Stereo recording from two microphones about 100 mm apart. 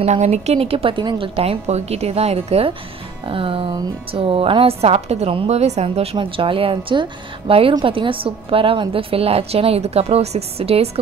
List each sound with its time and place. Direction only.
0.0 s a woman's voice: 90° right
3.3 s a woman's voice: 65° right (ahead or behind); by 6.0 s 90° right
6.1 s a woman's voice: 60° right (ahead or behind); by 10.9 s 90° right